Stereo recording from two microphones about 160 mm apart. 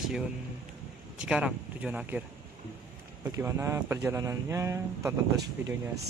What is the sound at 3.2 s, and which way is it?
Speech, 15° right (ahead or behind).